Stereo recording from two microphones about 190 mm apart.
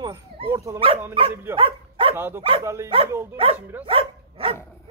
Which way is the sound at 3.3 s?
30° right (ahead or behind).